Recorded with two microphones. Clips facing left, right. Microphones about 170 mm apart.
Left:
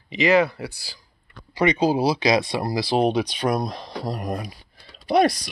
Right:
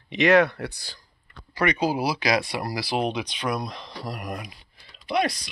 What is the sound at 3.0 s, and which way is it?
Speech, 40° left (ahead or behind).